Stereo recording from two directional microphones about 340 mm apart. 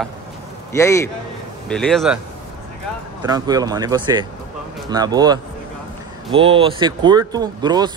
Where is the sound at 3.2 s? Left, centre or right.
Centre.